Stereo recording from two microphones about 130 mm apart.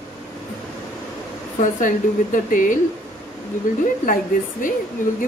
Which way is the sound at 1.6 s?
90° left.